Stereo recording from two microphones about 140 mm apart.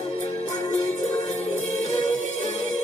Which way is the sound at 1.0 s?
55° left (ahead or behind).